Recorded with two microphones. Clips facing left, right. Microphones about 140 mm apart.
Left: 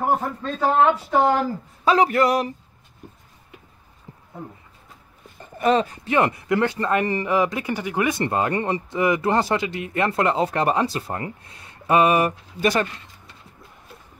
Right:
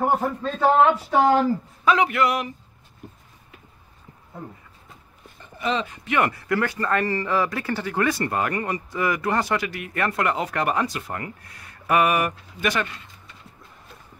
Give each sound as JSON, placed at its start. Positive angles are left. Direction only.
{"t": 0.0, "sound": "a man's voice", "side_deg": 0}
{"t": 1.9, "sound": "a man's voice", "side_deg": 35}
{"t": 5.6, "sound": "speech", "side_deg": 45}
{"t": 6.0, "sound": "speech", "side_deg": 25}